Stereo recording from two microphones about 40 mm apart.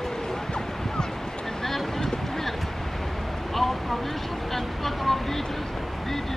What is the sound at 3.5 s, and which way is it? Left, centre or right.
Vehicle, centre.